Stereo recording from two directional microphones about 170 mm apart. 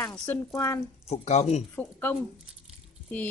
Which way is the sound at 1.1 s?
40° left (ahead or behind).